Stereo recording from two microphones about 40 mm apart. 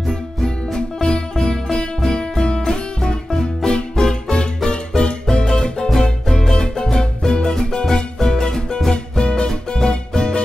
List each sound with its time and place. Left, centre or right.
1.0 s music: centre